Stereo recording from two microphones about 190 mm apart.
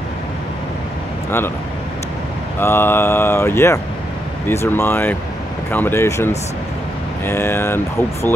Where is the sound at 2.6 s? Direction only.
10° left (ahead or behind).